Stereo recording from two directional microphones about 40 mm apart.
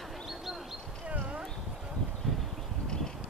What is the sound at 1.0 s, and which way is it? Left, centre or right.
Dog, right.